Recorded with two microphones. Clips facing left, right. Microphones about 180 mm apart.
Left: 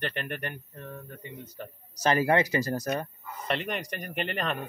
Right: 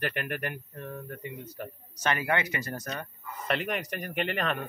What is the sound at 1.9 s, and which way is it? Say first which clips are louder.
A man's voice: left 5 dB; 35° left (ahead or behind).